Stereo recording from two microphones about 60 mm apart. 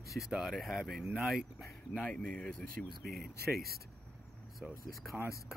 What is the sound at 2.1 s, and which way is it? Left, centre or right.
Speech, centre.